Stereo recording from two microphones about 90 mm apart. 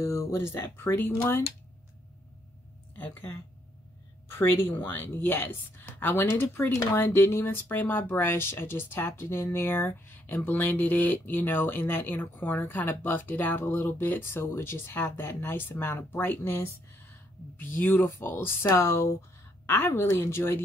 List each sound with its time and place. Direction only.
0.0 s speech: 30° left (ahead or behind)
3.0 s speech: 20° left (ahead or behind)
17.9 s a woman's voice: 25° left (ahead or behind)